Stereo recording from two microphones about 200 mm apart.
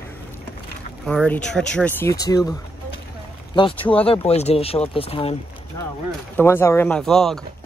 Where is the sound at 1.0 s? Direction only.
5° left (ahead or behind).